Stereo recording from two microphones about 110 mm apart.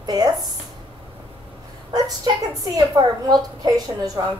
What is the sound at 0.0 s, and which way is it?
Speech, 35° right (ahead or behind).